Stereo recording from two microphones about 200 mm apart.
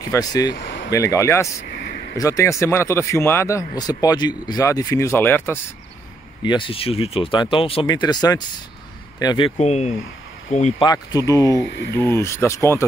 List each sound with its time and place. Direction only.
0.1 s speech: 20° left (ahead or behind)
0.6 s a sound: 60° left (ahead or behind)
0.8 s speech: 15° left (ahead or behind)
1.9 s a sound: 50° left (ahead or behind)
2.1 s speech: 15° left (ahead or behind)
6.4 s speech: 25° left (ahead or behind)
9.6 s speech: 35° left (ahead or behind)
10.8 s speech: 20° left (ahead or behind)